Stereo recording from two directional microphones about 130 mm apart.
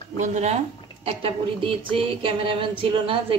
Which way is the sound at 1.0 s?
45° right (ahead or behind).